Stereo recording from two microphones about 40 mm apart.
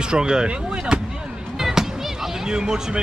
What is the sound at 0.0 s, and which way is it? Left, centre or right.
Speech, centre.